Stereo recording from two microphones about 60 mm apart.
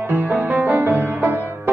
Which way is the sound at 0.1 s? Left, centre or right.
Right.